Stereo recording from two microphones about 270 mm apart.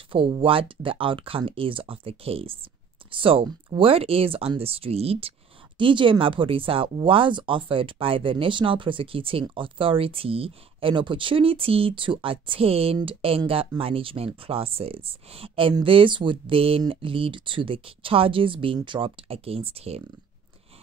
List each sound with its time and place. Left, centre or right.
0.1 s speech: centre